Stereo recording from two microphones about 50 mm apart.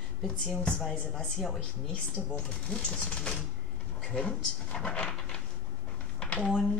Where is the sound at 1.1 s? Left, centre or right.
Centre.